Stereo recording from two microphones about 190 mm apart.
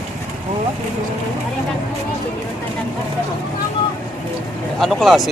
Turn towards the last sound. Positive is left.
turn(degrees=0)  # may be behind; listen again after turning